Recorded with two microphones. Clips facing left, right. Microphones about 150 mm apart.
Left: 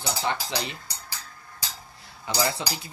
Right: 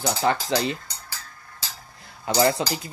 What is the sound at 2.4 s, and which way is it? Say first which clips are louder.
Speech: right 7 dB; 35° right (ahead or behind).